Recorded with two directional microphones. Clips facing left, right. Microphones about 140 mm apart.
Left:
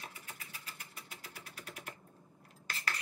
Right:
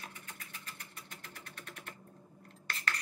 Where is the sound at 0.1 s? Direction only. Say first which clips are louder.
Even; 5° left (ahead or behind).